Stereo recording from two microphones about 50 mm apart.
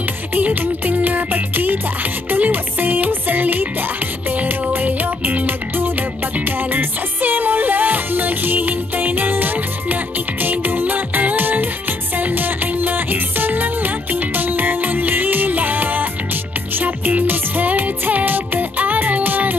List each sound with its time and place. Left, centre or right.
0.3 s music: right